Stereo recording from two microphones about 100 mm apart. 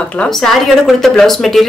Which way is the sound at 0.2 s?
5° left (ahead or behind).